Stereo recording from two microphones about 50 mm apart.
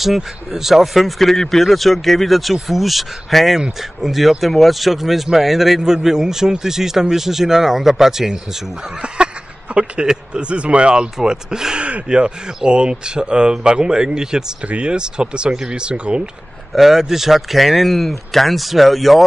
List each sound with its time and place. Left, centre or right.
0.0 s a man's voice: centre
9.0 s a sound: right
10.0 s speech: centre
14.6 s speech: right
16.7 s a man's voice: centre